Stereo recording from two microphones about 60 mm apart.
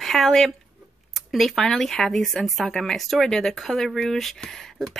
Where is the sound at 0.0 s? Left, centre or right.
Centre.